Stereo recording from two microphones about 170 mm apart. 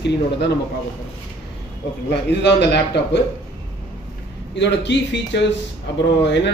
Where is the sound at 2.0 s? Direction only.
80° left.